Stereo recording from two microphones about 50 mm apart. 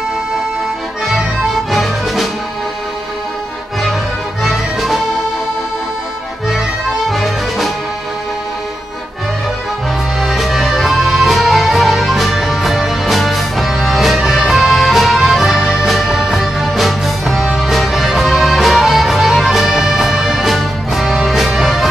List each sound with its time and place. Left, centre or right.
1.0 s music: centre
4.4 s music: centre
7.1 s music: centre
10.2 s music: centre